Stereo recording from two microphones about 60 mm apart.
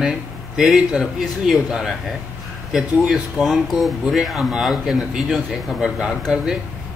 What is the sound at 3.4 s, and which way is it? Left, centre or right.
A man's voice, centre.